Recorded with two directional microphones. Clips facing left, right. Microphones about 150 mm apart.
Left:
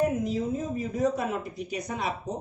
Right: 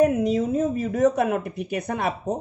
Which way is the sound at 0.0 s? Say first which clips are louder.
Right 7 dB; 75° right (ahead or behind).